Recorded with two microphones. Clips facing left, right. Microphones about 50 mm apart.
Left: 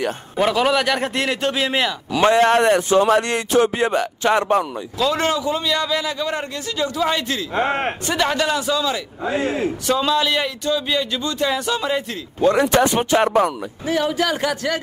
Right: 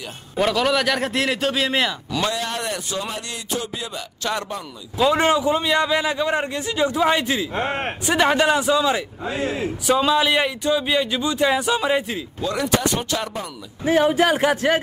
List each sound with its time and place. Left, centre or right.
0.4 s a man's voice: centre
2.3 s speech: left
3.1 s speech: left
4.2 s speech: left
4.9 s a man's voice: centre
7.5 s speech: centre
8.1 s a man's voice: centre
9.4 s speech: left
9.8 s speech: centre
12.4 s speech: left
13.8 s a man's voice: right